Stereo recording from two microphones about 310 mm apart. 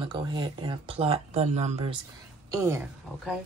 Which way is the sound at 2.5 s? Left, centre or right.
Centre.